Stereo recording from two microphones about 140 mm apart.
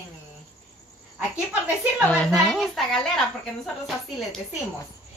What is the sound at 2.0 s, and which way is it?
Speech, 10° left (ahead or behind).